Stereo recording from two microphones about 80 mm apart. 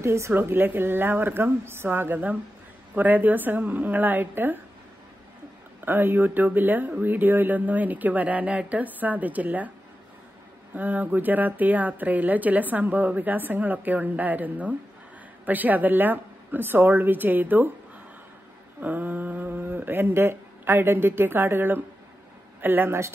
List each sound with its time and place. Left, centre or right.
0.0 s a woman's voice: right
5.9 s a woman's voice: right
10.7 s a woman's voice: right
18.8 s a woman's voice: right